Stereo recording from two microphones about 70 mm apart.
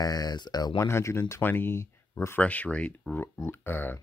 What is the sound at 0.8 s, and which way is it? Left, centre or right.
Speech, left.